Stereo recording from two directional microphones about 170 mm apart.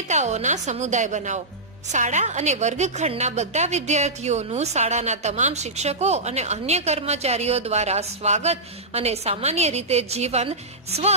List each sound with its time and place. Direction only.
0.1 s a woman's voice: 40° right (ahead or behind)